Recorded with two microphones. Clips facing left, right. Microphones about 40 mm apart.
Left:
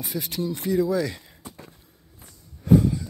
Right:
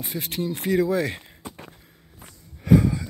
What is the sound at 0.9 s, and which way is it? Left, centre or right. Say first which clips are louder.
Speech: right 1 dB; right.